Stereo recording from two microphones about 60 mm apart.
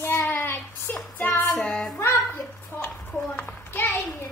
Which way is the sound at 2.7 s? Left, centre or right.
Left.